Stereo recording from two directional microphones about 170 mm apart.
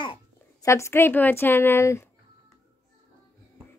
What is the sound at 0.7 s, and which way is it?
A woman's voice, 15° left (ahead or behind).